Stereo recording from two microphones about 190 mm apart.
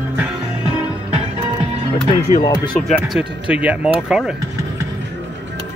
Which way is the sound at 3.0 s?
5° right (ahead or behind).